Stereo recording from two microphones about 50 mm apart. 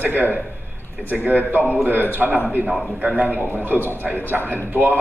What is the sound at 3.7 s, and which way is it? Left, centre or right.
Speech, left.